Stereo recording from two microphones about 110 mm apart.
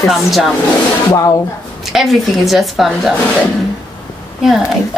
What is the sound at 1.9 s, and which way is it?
Speech, centre (ahead or behind).